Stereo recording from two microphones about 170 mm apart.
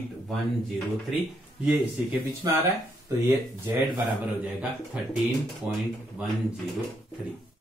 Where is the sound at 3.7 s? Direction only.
10° right (ahead or behind).